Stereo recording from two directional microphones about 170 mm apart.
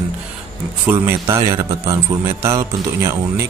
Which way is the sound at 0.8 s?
15° right (ahead or behind).